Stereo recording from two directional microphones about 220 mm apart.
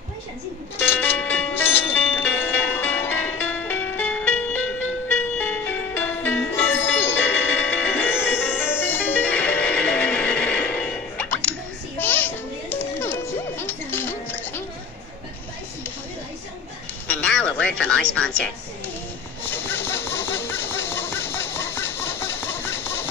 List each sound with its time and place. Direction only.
0.7 s music: 10° left (ahead or behind)
17.1 s music: 5° left (ahead or behind)
19.4 s a sound: 10° left (ahead or behind)